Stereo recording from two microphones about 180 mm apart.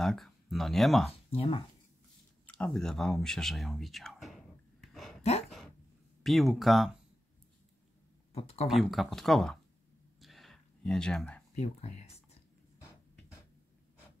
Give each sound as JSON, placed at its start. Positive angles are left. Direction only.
{"t": 0.0, "sound": "speech", "side_deg": 0}
{"t": 1.3, "sound": "speech", "side_deg": 30}
{"t": 2.4, "sound": "speech", "side_deg": 5}
{"t": 4.8, "sound": "a sound", "side_deg": 0}
{"t": 6.2, "sound": "speech", "side_deg": 0}
{"t": 8.3, "sound": "speech", "side_deg": 35}
{"t": 8.6, "sound": "speech", "side_deg": 0}
{"t": 10.2, "sound": "a sound", "side_deg": 0}
{"t": 11.5, "sound": "speech", "side_deg": 35}